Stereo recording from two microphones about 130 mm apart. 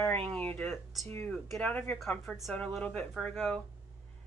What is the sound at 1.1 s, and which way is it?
Speech, 15° left (ahead or behind).